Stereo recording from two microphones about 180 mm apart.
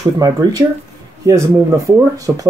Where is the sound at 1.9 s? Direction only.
20° right (ahead or behind).